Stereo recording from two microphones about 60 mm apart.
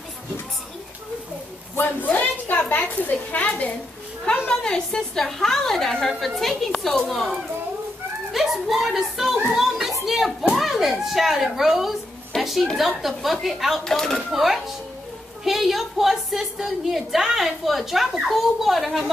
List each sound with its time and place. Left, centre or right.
1.8 s a sound: left
2.7 s a woman's voice: left
4.5 s a woman's voice: centre
9.5 s children playing: centre
10.0 s a sound: centre
10.5 s a woman's voice: centre
13.8 s a woman's voice: centre
14.3 s a woman's voice: centre